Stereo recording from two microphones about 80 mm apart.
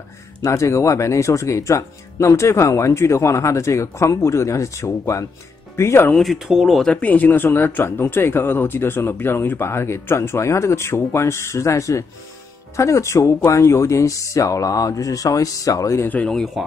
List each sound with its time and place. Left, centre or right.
0.4 s speech: left
6.3 s speech: centre
6.9 s speech: centre; by 16.1 s left
16.6 s speech: centre